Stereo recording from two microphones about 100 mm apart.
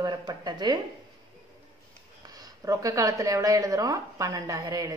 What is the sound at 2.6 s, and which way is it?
A woman's voice, 35° right (ahead or behind).